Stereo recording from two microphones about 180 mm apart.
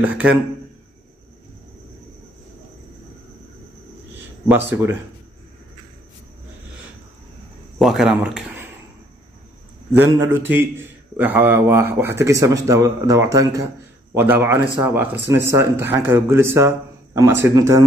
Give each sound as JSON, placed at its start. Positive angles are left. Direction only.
{"t": 0.0, "sound": "a man's voice", "side_deg": -5}
{"t": 4.5, "sound": "a man's voice", "side_deg": -10}
{"t": 7.8, "sound": "speech", "side_deg": -5}
{"t": 9.9, "sound": "a man's voice", "side_deg": -15}